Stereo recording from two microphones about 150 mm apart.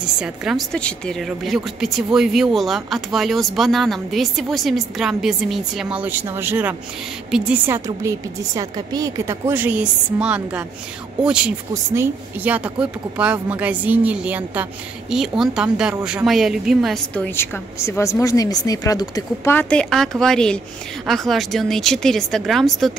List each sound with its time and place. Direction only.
0.2 s speech: 5° right (ahead or behind)
0.7 s speech: 5° left (ahead or behind); by 6.7 s 15° right (ahead or behind)
7.2 s a woman's voice: 5° right (ahead or behind)
7.6 s speech: 20° right (ahead or behind)
11.7 s speech: 20° right (ahead or behind); by 17.0 s centre (ahead or behind)
17.1 s speech: 10° left (ahead or behind)
19.5 s speech: 10° left (ahead or behind)